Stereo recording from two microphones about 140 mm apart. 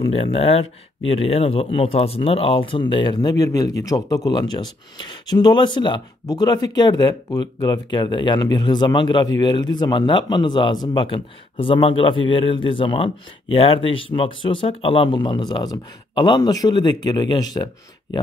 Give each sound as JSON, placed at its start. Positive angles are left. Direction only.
{"t": 0.0, "sound": "speech", "side_deg": 40}